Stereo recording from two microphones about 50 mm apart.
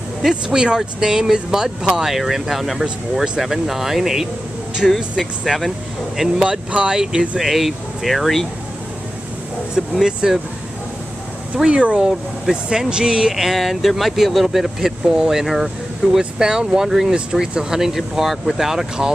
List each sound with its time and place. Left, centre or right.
0.3 s speech: centre
6.3 s speech: centre
10.0 s speech: centre
11.5 s speech: right
13.3 s speech: centre